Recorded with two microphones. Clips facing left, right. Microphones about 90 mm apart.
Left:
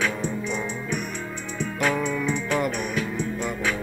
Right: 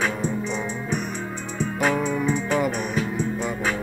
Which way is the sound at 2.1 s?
35° right (ahead or behind).